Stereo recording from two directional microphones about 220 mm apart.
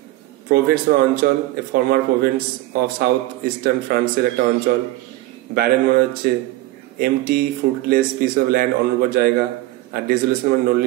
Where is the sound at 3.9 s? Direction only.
45° right (ahead or behind).